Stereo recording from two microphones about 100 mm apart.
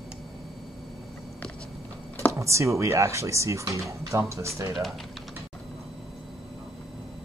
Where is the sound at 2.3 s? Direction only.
30° right (ahead or behind).